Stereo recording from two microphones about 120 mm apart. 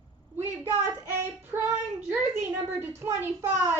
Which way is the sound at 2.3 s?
20° right (ahead or behind).